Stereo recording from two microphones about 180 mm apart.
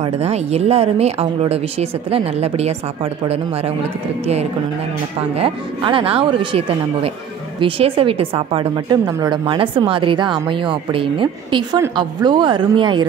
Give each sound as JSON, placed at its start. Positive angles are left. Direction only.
{"t": 0.0, "sound": "speech", "side_deg": -35}
{"t": 5.3, "sound": "a woman's voice", "side_deg": -30}